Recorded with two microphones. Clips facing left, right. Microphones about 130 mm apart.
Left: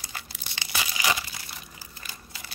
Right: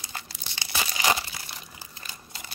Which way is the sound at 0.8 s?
35° right (ahead or behind).